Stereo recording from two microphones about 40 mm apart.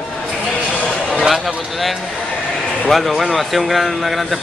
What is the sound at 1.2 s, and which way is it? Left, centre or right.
A man's voice, centre.